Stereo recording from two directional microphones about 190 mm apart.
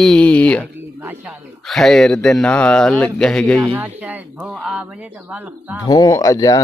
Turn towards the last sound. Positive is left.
turn(degrees=20)  # may be behind; listen again after turning